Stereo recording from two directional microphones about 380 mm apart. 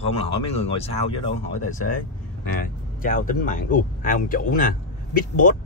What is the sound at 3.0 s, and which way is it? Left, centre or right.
Speech, left.